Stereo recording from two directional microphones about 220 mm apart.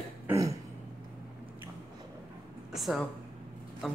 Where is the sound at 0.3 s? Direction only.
15° right (ahead or behind).